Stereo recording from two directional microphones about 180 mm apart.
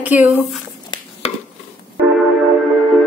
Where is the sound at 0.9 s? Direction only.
35° left (ahead or behind).